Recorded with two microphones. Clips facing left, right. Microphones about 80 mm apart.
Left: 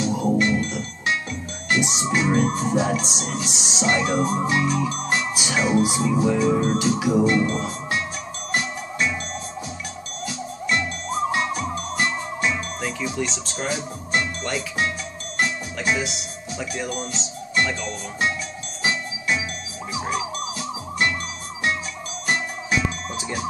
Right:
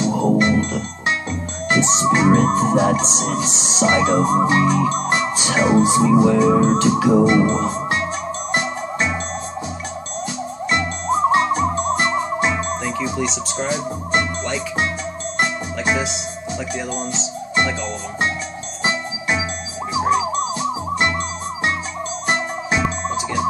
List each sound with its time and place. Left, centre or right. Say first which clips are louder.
0.2 s music: right 5 dB; right
10.7 s music: right 5 dB; right
13.2 s speech: right 5 dB; centre
15.3 s music: right 2 dB; right
18.9 s music: right 3 dB; right